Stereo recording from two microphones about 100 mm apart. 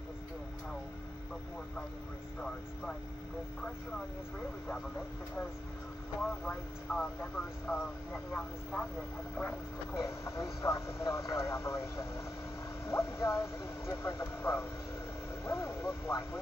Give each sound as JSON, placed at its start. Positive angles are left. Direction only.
{"t": 2.4, "sound": "speech", "side_deg": 10}
{"t": 6.9, "sound": "speech", "side_deg": 5}
{"t": 8.3, "sound": "speech", "side_deg": 25}
{"t": 9.4, "sound": "vehicle", "side_deg": 25}